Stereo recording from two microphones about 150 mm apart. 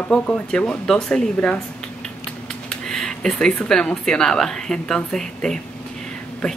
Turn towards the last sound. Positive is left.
turn(degrees=5)  # may be behind; listen again after turning